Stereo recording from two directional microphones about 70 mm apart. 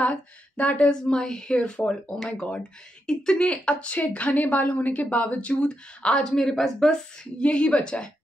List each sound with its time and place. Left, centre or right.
0.0 s speech: left